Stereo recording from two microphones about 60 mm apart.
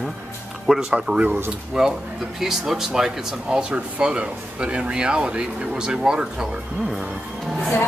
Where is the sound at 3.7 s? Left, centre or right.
Right.